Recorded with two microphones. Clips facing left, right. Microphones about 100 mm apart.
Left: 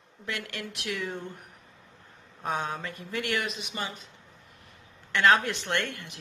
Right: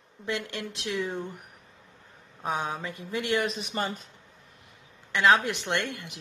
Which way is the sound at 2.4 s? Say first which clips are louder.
Right 1 dB; 10° right (ahead or behind).